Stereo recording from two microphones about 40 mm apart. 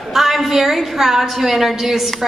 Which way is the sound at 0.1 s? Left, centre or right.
Centre.